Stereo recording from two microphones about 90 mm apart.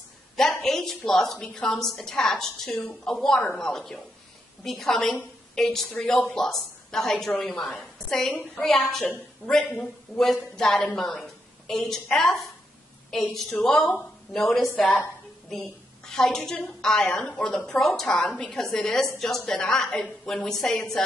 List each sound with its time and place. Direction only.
0.4 s a woman's voice: 5° left (ahead or behind)
16.1 s a woman's voice: 5° left (ahead or behind)